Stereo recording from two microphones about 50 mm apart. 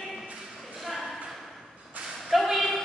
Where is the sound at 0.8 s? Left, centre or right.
Centre.